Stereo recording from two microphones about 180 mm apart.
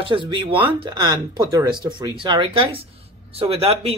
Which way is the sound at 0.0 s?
25° right (ahead or behind).